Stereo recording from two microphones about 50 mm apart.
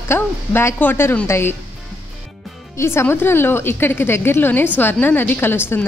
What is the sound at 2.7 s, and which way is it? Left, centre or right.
A woman's voice, left.